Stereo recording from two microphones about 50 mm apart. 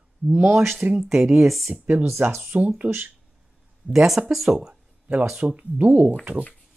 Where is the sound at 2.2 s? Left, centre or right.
Right.